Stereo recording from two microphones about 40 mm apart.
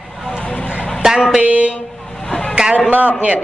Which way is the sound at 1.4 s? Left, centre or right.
Right.